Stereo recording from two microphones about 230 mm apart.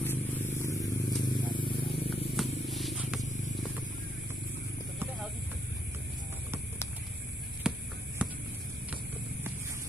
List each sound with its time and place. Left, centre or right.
0.0 s vehicle: centre
2.3 s purr: centre
7.7 s hum: centre
8.2 s a sound: centre